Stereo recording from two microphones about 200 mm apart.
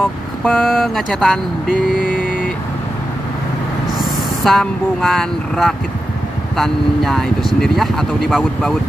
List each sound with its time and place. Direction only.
0.5 s speech: centre (ahead or behind)
2.0 s vehicle: 45° left (ahead or behind)
4.0 s speech: centre (ahead or behind)